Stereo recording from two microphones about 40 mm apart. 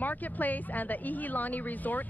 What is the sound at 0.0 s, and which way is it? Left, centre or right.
Speech, left.